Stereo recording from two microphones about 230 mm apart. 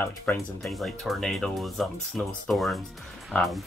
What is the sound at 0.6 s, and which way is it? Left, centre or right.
Speech, centre.